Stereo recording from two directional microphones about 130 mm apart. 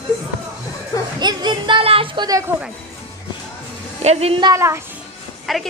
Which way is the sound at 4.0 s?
55° right (ahead or behind).